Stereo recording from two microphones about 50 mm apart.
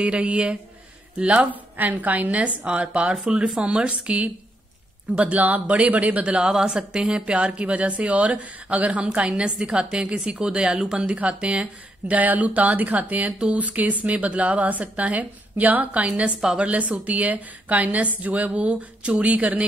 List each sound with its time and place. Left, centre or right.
0.0 s a woman's voice: right
6.3 s speech: centre
9.3 s a woman's voice: centre
11.1 s speech: right